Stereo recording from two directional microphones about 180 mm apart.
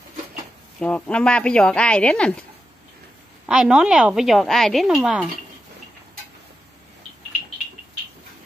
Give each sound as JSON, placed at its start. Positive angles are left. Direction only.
{"t": 0.7, "sound": "a woman's voice", "side_deg": 5}
{"t": 3.4, "sound": "a woman's voice", "side_deg": -5}